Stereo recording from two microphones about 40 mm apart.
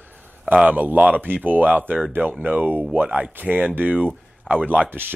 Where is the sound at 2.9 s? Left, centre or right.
Right.